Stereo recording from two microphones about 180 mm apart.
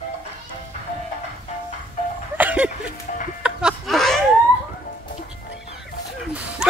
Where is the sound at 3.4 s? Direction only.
Centre (ahead or behind).